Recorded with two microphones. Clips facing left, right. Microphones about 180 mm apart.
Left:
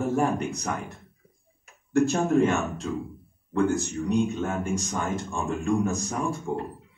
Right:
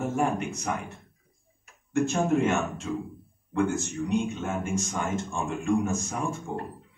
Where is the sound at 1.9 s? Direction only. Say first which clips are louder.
Left 2 dB; 35° left (ahead or behind).